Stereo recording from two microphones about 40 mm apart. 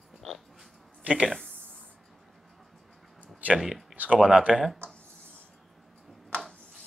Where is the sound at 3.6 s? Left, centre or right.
Centre.